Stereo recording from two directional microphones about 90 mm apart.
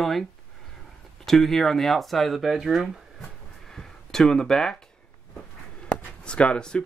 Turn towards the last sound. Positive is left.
turn(degrees=10)  # may be behind; listen again after turning